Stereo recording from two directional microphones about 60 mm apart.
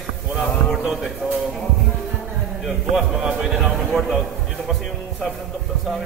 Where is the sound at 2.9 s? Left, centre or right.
Centre.